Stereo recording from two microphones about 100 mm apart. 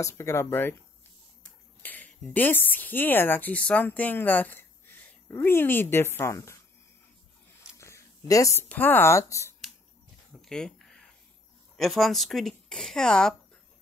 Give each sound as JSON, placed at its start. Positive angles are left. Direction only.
{"t": 0.0, "sound": "speech", "side_deg": 30}
{"t": 1.8, "sound": "speech", "side_deg": 15}
{"t": 7.7, "sound": "a sound", "side_deg": 30}
{"t": 8.6, "sound": "speech", "side_deg": 20}
{"t": 10.4, "sound": "a sound", "side_deg": 5}
{"t": 11.7, "sound": "speech", "side_deg": 0}